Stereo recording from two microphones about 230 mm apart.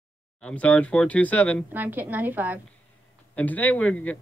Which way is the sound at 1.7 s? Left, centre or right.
Centre.